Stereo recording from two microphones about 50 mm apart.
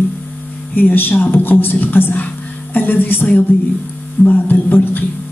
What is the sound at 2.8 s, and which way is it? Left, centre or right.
Music, left.